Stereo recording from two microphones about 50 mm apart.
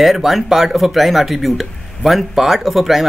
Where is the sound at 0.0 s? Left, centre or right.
Centre.